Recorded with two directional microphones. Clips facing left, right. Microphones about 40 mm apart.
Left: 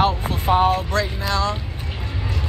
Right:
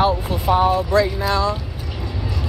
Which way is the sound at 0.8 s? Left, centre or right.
Right.